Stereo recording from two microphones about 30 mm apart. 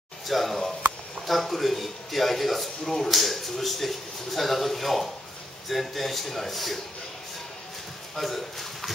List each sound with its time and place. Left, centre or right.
0.3 s a man's voice: centre
8.2 s speech: centre